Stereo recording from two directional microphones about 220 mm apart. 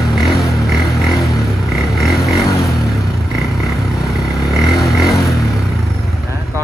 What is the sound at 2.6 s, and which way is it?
Vehicle, centre (ahead or behind).